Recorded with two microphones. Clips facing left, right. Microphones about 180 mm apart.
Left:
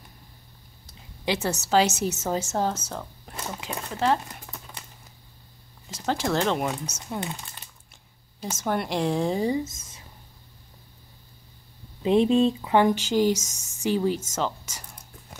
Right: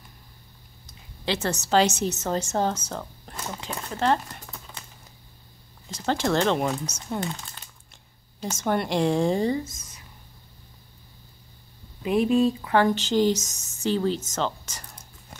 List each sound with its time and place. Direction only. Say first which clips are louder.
1.2 s speech: even; 10° left (ahead or behind)
5.9 s speech: right 2 dB; 5° left (ahead or behind)
9.5 s speech: even; 25° left (ahead or behind)
12.0 s speech: left 1 dB; 25° left (ahead or behind); by 15.3 s 5° left (ahead or behind)